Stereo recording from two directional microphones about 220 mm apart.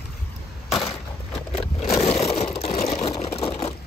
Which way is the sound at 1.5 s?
30° left (ahead or behind).